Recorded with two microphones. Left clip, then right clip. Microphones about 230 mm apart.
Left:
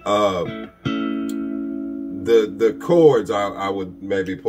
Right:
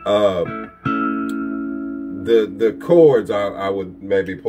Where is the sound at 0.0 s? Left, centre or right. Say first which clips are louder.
Right 2 dB; centre.